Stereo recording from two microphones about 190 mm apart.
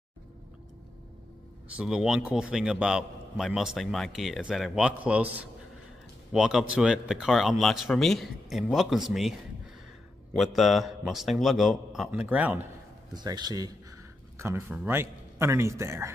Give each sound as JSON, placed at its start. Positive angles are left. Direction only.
{"t": 1.7, "sound": "a man's voice", "side_deg": -5}
{"t": 10.3, "sound": "a man's voice", "side_deg": 0}
{"t": 13.1, "sound": "a man's voice", "side_deg": -20}